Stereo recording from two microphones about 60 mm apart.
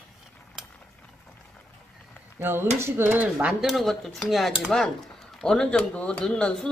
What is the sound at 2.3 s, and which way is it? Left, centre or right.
Speech, right.